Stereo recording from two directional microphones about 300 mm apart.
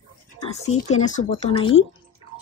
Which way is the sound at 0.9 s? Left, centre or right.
Left.